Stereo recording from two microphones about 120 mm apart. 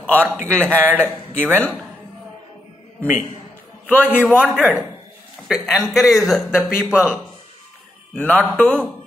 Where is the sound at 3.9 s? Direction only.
15° left (ahead or behind).